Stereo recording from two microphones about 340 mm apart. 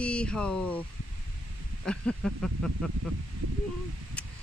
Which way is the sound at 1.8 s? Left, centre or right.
Centre.